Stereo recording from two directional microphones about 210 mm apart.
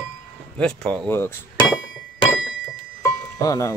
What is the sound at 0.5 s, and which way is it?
Speech, 5° left (ahead or behind).